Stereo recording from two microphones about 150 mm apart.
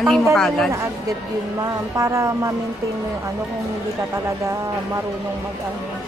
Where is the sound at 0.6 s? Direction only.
20° right (ahead or behind).